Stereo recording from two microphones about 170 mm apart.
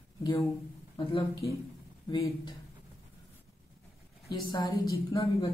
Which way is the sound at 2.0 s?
25° left (ahead or behind).